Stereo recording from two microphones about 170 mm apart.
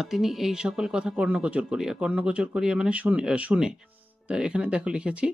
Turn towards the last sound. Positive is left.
turn(degrees=-5)  # may be behind; listen again after turning